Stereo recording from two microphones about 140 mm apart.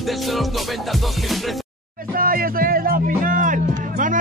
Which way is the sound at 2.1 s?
90° right.